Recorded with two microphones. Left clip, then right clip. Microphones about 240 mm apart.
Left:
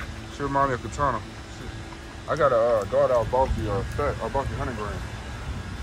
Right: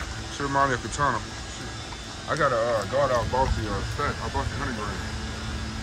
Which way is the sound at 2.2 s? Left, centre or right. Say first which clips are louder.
Left 3 dB; centre.